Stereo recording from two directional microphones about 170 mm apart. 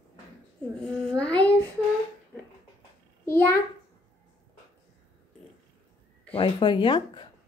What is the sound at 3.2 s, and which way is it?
Speech, 15° left (ahead or behind).